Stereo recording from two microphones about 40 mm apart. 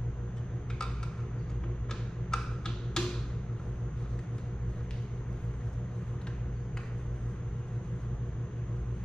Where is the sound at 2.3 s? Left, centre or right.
Centre.